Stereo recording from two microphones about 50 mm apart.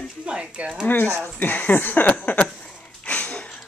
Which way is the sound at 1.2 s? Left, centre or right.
Left.